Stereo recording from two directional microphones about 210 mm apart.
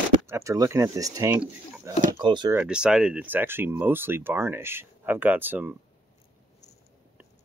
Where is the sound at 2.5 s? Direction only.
5° right (ahead or behind).